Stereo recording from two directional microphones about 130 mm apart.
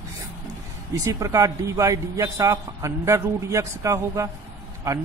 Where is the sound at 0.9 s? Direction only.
25° right (ahead or behind).